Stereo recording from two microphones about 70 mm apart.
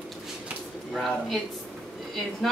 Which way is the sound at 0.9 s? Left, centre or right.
Centre.